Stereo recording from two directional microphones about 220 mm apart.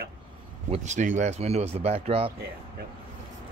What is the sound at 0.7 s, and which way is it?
Speech, 35° right (ahead or behind).